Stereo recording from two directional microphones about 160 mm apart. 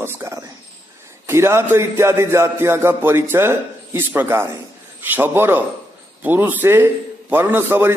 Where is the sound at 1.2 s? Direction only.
15° right (ahead or behind).